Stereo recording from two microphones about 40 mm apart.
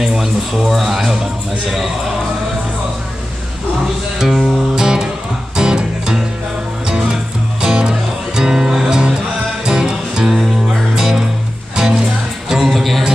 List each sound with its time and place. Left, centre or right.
0.0 s a sound: centre
0.6 s speech: centre
4.2 s music: centre